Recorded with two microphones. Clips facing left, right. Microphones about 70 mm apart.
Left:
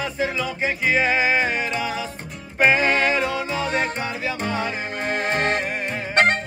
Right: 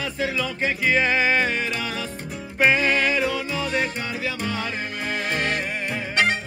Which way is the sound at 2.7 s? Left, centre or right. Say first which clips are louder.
Left 2 dB; left.